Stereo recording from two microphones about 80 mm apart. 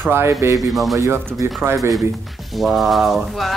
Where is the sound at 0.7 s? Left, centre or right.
Centre.